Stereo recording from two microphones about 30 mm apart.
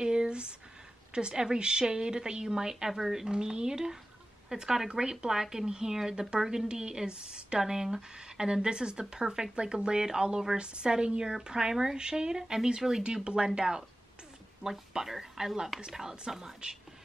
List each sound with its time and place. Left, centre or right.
0.0 s a sound: right
1.1 s a woman's voice: right; by 3.3 s centre
3.3 s a woman's voice: right
14.6 s a woman's voice: centre